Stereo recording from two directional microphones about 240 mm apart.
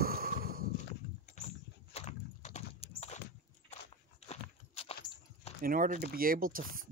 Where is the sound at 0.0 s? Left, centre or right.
Right.